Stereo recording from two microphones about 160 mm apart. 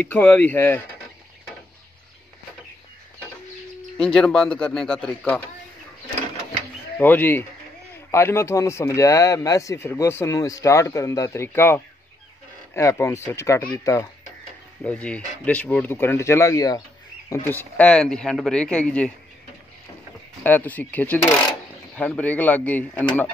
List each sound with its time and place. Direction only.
0.0 s speech: 10° left (ahead or behind)
4.0 s speech: 5° left (ahead or behind)
7.0 s speech: 10° left (ahead or behind)
20.4 s speech: 10° left (ahead or behind)